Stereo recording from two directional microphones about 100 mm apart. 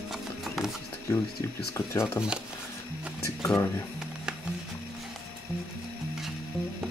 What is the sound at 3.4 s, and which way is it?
Speech, 25° left (ahead or behind).